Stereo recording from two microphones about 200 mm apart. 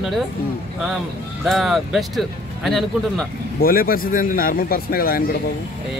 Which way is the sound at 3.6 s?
45° left (ahead or behind).